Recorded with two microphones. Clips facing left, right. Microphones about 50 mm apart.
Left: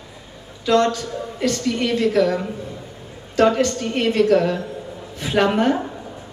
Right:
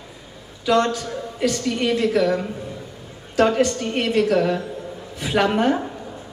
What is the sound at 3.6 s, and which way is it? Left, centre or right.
Speech, centre.